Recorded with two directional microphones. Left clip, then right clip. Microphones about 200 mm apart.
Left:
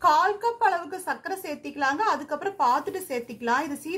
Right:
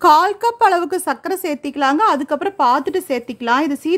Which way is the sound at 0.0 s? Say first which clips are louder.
Right 9 dB; 55° right (ahead or behind).